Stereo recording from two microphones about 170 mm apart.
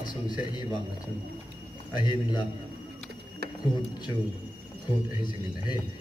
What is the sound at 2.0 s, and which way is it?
Speech, 25° left (ahead or behind).